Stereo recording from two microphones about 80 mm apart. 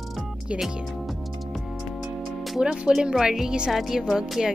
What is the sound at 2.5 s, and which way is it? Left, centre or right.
Speech, centre.